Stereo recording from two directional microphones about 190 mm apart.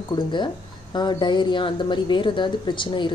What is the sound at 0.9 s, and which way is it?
Speech, 25° left (ahead or behind).